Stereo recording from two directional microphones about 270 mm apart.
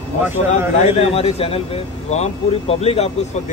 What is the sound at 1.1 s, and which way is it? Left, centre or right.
Speech, left.